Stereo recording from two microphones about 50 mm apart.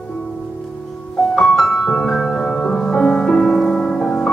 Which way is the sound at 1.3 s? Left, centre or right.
Centre.